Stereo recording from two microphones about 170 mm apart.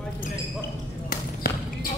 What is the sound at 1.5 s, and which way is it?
Basketball bounce, 60° left (ahead or behind).